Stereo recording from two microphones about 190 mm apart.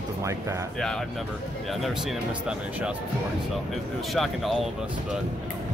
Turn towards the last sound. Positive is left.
turn(degrees=0)  # may be behind; listen again after turning